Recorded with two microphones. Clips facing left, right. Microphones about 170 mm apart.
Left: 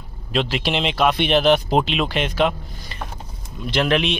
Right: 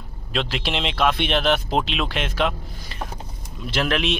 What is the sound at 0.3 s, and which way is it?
Speech, centre (ahead or behind).